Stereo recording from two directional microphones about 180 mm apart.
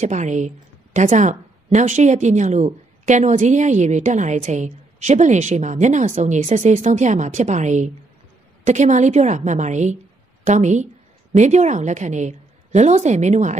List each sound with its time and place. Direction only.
0.0 s speech: 40° right (ahead or behind)